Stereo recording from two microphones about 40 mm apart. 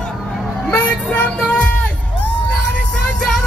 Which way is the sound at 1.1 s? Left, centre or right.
Left.